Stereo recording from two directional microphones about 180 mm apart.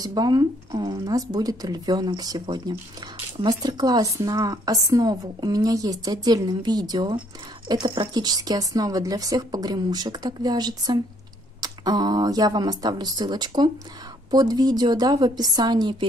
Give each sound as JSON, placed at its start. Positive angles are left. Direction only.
{"t": 0.0, "sound": "a woman's voice", "side_deg": -20}